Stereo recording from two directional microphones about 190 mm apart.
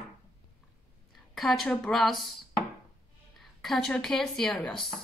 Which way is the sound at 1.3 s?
Centre (ahead or behind).